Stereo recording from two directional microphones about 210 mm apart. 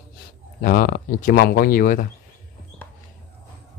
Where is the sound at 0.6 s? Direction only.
45° left (ahead or behind).